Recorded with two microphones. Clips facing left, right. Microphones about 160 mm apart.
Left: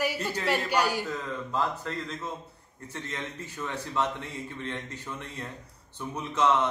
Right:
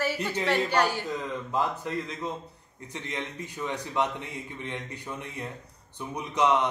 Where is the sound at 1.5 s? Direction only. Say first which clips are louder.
Right 2 dB; 15° right (ahead or behind).